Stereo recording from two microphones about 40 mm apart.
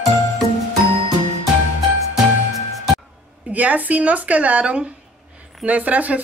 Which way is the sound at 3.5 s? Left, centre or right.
Right.